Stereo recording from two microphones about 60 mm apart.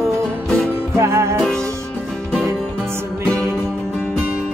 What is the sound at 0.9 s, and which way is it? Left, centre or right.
Music, right.